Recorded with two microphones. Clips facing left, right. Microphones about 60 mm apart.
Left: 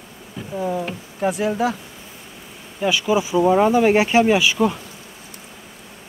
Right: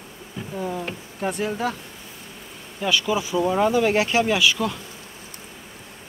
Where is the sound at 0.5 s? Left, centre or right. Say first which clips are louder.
Left 5 dB; centre.